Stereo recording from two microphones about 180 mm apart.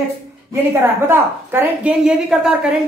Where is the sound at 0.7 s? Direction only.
15° right (ahead or behind).